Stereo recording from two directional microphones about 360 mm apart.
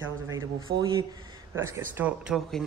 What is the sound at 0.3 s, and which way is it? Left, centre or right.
Speech, right.